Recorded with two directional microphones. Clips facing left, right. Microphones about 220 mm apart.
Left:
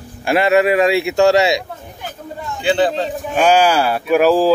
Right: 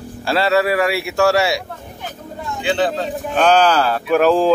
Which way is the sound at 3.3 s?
10° left (ahead or behind).